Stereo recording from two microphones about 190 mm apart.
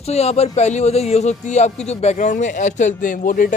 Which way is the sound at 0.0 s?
35° left (ahead or behind).